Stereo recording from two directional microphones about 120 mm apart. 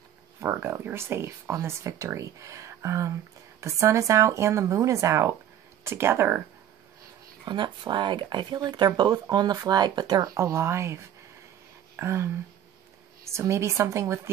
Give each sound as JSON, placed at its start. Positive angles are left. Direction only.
{"t": 0.4, "sound": "speech", "side_deg": -20}
{"t": 7.4, "sound": "speech", "side_deg": -40}